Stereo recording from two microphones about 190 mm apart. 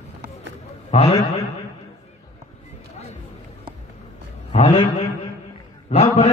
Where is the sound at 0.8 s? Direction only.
30° left (ahead or behind).